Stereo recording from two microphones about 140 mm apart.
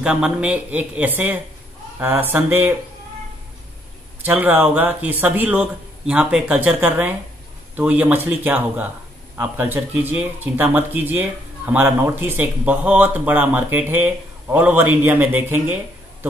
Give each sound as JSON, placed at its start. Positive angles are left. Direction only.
{"t": 0.0, "sound": "speech", "side_deg": -5}
{"t": 4.2, "sound": "speech", "side_deg": -10}